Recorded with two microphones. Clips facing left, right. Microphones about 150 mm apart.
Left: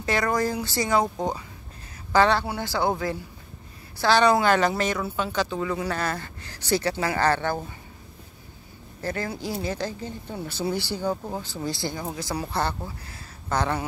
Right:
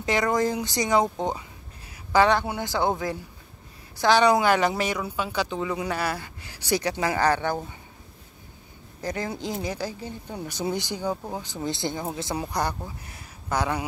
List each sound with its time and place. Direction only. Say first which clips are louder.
0.0 s speech: right 1 dB; 20° right (ahead or behind)
4.0 s speech: even; 15° right (ahead or behind)
9.0 s speech: even; 15° right (ahead or behind)